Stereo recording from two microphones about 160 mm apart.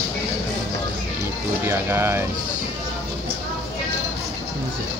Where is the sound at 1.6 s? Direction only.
15° right (ahead or behind).